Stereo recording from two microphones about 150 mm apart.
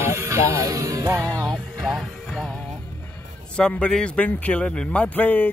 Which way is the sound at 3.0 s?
15° left (ahead or behind).